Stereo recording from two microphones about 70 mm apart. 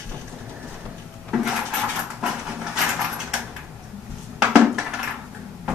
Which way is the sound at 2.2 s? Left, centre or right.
Centre.